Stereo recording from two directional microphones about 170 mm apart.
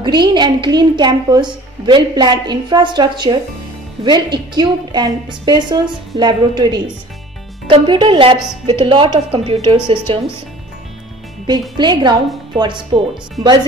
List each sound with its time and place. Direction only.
0.0 s a woman's voice: 25° right (ahead or behind)
4.6 s a woman's voice: 25° right (ahead or behind)
11.7 s a woman's voice: 25° right (ahead or behind)